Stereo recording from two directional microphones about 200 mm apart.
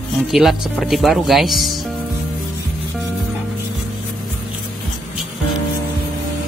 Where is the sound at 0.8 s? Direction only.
Centre (ahead or behind).